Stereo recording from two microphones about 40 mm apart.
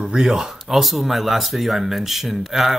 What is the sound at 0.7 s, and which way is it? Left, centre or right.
Speech, centre.